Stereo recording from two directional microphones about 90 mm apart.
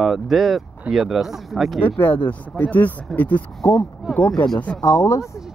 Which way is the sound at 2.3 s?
20° left (ahead or behind).